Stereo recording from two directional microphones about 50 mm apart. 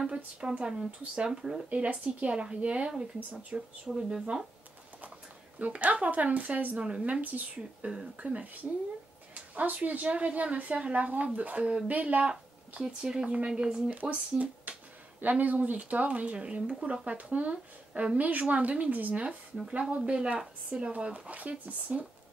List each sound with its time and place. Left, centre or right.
0.0 s speech: centre; by 3.5 s right
3.5 s speech: centre
5.6 s speech: right
14.6 s speech: right
20.3 s speech: centre
20.9 s speech: right